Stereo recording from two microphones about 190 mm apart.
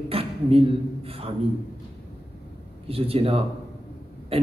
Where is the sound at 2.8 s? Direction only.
30° right (ahead or behind).